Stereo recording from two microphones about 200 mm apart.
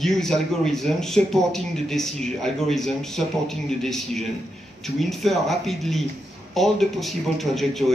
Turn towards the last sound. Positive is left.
turn(degrees=0)  # may be behind; listen again after turning